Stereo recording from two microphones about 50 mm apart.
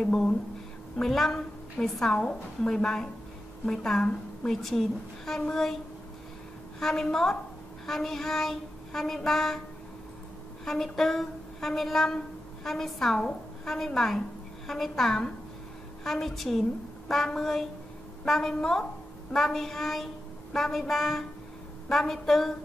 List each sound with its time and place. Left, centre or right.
1.0 s a woman's voice: centre
4.0 s a woman's voice: left
4.5 s a woman's voice: centre
6.8 s a woman's voice: centre
10.6 s a woman's voice: centre